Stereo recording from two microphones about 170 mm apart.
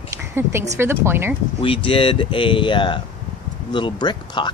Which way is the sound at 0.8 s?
15° right (ahead or behind).